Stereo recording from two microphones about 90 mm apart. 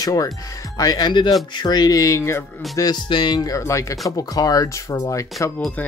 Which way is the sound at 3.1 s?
65° left (ahead or behind).